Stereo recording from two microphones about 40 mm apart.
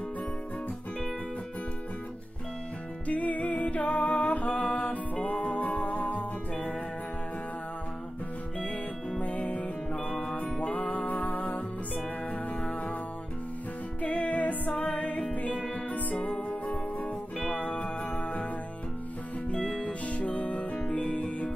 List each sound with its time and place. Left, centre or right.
3.1 s music: left
9.2 s music: left
10.7 s music: left
14.0 s music: left
14.7 s music: left
15.0 s music: left
15.5 s music: centre
15.9 s music: left
20.1 s music: left